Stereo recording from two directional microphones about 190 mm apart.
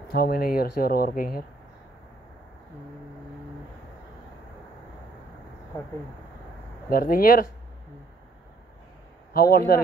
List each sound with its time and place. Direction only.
0.1 s speech: 55° left (ahead or behind)
6.9 s speech: 50° left (ahead or behind)
9.3 s speech: 50° left (ahead or behind)